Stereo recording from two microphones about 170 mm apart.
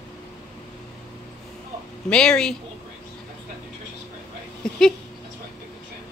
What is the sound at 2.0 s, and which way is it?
Speech, 5° left (ahead or behind).